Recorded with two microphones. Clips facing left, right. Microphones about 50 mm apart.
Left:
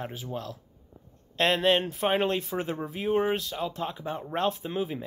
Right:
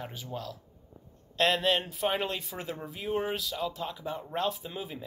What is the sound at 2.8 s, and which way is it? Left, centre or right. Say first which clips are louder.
Speech: left 5 dB; left.